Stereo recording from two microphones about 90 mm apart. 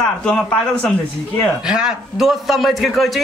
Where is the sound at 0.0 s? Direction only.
10° left (ahead or behind).